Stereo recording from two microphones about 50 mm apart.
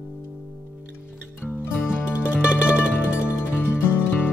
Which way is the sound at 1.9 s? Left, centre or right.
Right.